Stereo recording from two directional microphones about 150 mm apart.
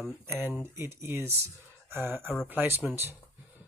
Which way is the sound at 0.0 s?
15° right (ahead or behind).